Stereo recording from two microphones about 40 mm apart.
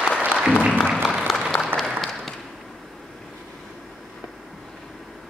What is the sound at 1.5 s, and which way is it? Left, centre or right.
Applause, left.